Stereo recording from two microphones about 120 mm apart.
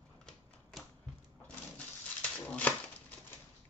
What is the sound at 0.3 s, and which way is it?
Typewriter, 5° left (ahead or behind).